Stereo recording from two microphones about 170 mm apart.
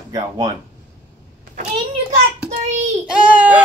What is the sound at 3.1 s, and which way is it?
Speech, 5° right (ahead or behind).